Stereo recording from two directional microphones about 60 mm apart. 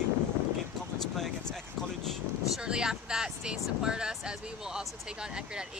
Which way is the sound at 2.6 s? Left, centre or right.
Centre.